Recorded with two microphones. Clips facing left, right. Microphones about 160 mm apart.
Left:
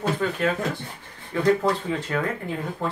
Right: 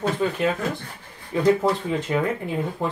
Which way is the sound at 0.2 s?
15° right (ahead or behind).